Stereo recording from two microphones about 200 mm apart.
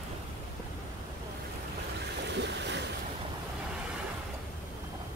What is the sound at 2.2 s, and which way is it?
Boat, 60° right (ahead or behind).